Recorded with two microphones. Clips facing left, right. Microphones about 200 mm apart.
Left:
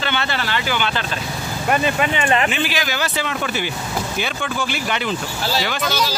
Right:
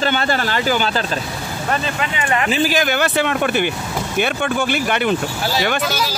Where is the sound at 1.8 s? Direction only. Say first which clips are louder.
Left 3 dB; 25° left (ahead or behind).